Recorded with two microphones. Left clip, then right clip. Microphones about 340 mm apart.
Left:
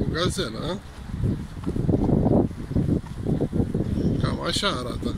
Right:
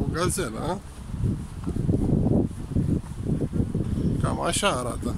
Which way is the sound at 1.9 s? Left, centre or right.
Left.